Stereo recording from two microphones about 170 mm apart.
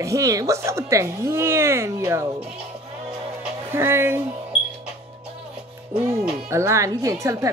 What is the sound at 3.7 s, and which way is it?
Speech, 15° right (ahead or behind).